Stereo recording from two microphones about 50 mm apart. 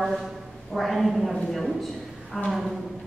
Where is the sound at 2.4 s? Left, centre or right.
Centre.